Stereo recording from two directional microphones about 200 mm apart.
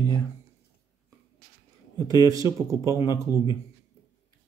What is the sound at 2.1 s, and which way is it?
Speech, 15° right (ahead or behind).